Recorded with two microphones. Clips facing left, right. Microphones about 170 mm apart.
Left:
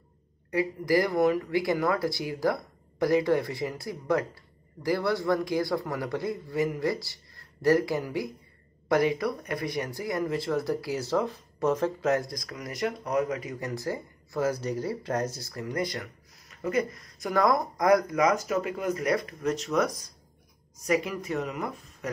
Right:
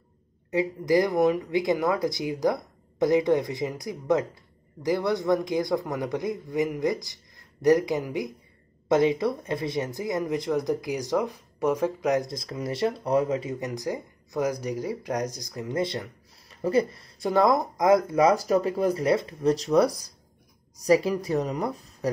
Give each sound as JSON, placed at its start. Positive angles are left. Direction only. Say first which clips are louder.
{"t": 0.5, "sound": "speech", "louder": "right 2 dB", "side_deg": -20}